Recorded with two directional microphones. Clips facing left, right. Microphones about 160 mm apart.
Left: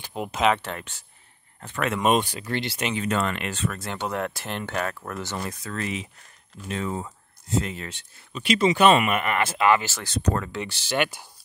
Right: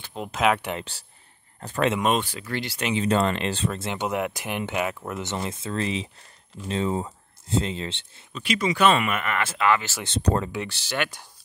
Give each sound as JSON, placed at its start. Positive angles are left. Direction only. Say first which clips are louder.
{"t": 0.0, "sound": "a sound", "louder": "left 2 dB", "side_deg": 5}
{"t": 0.4, "sound": "speech", "louder": "even", "side_deg": -10}
{"t": 1.6, "sound": "speech", "louder": "right 4 dB", "side_deg": -35}
{"t": 2.0, "sound": "speech", "louder": "left 2 dB", "side_deg": 15}
{"t": 3.0, "sound": "speech", "louder": "right 5 dB", "side_deg": -30}
{"t": 8.4, "sound": "speech", "louder": "left 3 dB", "side_deg": 20}
{"t": 10.0, "sound": "speech", "louder": "right 2 dB", "side_deg": -25}
{"t": 10.7, "sound": "speech", "louder": "left 3 dB", "side_deg": 15}